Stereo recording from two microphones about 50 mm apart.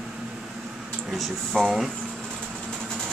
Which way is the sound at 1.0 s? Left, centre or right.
Centre.